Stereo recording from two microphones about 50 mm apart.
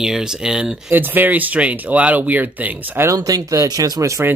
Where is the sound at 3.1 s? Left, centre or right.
Right.